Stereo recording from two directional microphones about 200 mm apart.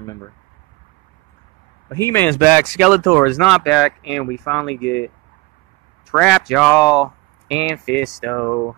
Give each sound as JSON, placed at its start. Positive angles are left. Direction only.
{"t": 1.9, "sound": "speech", "side_deg": 15}
{"t": 2.3, "sound": "speech", "side_deg": -10}
{"t": 4.1, "sound": "speech", "side_deg": 10}
{"t": 4.7, "sound": "speech", "side_deg": 60}
{"t": 6.1, "sound": "speech", "side_deg": 0}
{"t": 8.3, "sound": "speech", "side_deg": 5}